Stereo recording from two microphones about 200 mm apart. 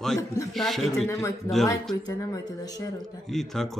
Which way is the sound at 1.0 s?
15° left (ahead or behind).